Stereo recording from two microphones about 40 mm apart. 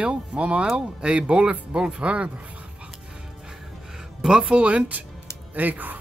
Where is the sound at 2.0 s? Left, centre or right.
Right.